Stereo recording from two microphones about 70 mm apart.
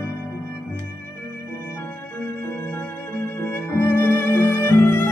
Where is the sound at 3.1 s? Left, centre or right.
Left.